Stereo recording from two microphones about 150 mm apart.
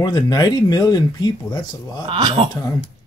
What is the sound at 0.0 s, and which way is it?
Speech, 30° left (ahead or behind).